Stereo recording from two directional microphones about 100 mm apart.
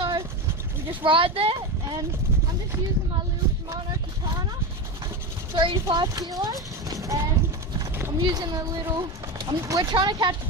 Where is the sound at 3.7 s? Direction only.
35° right (ahead or behind).